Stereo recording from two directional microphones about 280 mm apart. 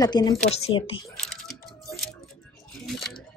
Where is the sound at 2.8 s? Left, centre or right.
Centre.